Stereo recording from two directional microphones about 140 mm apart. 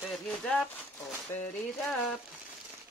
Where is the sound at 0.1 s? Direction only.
5° left (ahead or behind).